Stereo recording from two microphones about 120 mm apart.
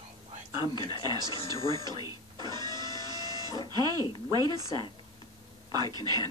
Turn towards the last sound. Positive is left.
turn(degrees=-35)  # may be behind; listen again after turning